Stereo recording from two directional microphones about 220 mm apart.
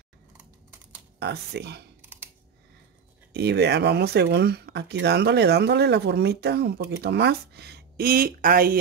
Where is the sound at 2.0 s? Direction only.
10° right (ahead or behind).